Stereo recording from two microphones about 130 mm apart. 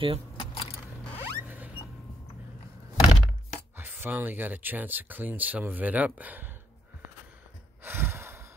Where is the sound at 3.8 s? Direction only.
15° right (ahead or behind).